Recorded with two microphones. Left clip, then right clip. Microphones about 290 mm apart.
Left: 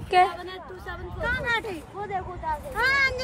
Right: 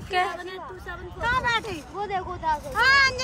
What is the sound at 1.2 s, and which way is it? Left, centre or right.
Speech, centre.